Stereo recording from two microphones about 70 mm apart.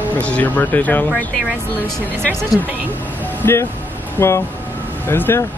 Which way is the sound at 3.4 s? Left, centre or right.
Left.